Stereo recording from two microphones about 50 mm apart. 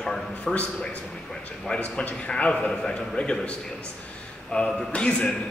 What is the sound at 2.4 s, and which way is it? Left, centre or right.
A man's voice, left.